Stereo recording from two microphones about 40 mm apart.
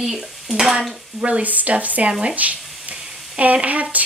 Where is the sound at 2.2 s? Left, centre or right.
Right.